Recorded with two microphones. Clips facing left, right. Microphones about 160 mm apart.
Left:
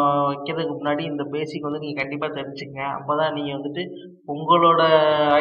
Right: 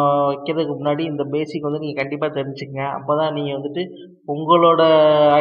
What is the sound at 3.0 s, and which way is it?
A man's voice, 10° right (ahead or behind).